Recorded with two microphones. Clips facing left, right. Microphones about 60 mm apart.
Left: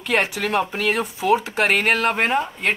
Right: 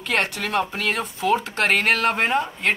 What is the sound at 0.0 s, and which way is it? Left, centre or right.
A woman's voice, centre.